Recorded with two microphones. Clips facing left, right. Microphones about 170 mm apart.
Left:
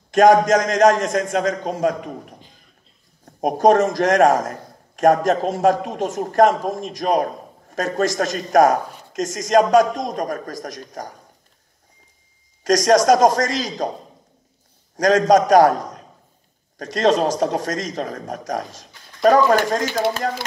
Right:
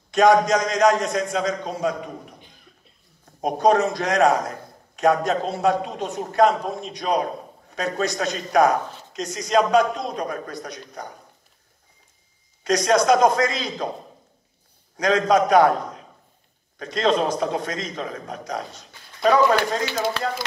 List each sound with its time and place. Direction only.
0.1 s a man's voice: 45° left (ahead or behind)
3.3 s a man's voice: 45° left (ahead or behind)
12.6 s a man's voice: 45° left (ahead or behind)
15.0 s a man's voice: 40° left (ahead or behind)